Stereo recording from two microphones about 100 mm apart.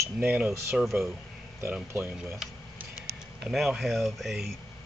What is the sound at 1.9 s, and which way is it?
Speech, 25° right (ahead or behind).